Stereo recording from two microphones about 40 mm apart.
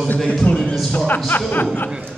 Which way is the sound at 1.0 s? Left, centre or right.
Left.